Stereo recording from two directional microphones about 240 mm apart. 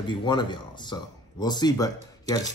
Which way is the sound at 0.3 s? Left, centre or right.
Centre.